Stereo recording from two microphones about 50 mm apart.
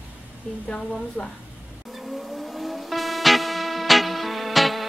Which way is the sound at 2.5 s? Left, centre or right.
Centre.